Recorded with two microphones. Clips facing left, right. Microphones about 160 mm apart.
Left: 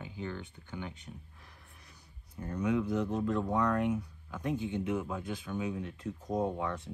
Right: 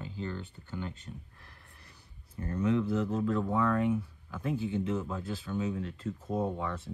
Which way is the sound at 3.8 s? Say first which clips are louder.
Right 2 dB; 15° left (ahead or behind).